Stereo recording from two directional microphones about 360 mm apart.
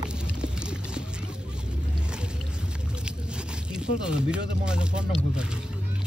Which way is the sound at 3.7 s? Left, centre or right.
Centre.